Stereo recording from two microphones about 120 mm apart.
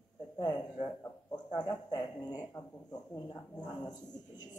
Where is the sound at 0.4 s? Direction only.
35° left (ahead or behind).